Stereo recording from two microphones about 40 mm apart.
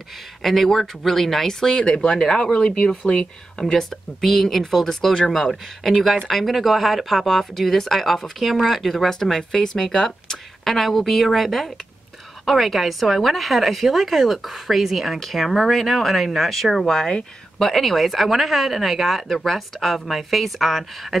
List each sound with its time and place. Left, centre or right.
0.4 s speech: centre; by 3.8 s left
4.2 s a woman's voice: centre